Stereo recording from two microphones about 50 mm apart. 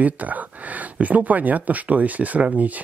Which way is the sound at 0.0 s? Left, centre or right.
Right.